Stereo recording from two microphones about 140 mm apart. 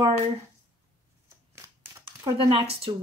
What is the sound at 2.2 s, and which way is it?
Speech, 40° right (ahead or behind).